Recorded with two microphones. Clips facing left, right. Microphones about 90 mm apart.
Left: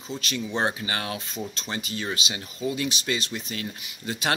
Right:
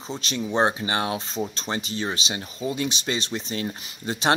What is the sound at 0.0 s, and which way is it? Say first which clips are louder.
Speech: right 2 dB; 25° right (ahead or behind).